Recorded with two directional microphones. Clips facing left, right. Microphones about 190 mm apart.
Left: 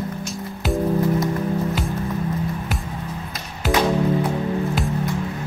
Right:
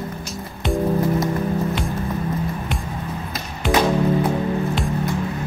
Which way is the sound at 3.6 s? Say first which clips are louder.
Right 2 dB; 5° left (ahead or behind).